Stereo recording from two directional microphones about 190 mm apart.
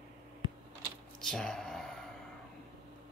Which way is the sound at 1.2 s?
Centre (ahead or behind).